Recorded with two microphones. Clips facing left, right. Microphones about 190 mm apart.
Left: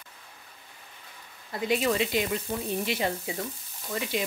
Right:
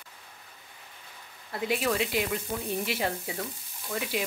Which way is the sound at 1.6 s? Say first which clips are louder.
Left 2 dB; 5° right (ahead or behind).